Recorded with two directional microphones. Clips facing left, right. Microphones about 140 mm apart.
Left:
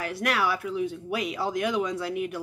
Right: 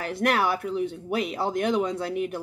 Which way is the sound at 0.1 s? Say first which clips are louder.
Right 4 dB; 50° right (ahead or behind).